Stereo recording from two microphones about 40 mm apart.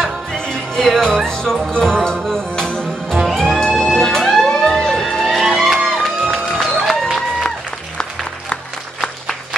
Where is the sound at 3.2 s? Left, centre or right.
Centre.